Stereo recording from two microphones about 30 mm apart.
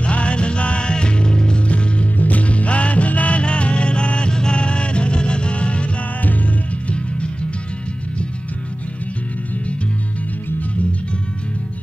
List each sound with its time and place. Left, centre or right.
0.0 s music: left
2.1 s music: left
4.3 s music: left
4.6 s music: left